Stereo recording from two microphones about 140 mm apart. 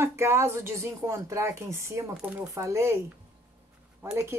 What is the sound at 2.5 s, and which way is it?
Speech, 20° right (ahead or behind).